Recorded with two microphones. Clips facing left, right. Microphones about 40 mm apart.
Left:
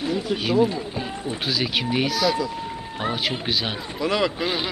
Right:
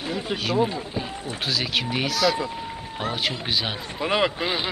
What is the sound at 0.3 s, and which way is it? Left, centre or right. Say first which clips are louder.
Speech: left 3 dB; right.